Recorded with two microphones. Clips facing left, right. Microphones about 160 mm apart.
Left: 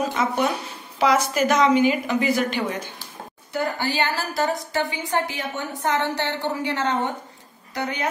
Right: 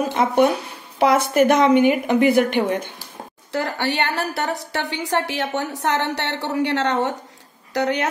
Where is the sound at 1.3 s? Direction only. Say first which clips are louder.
Right 4 dB; 55° right (ahead or behind).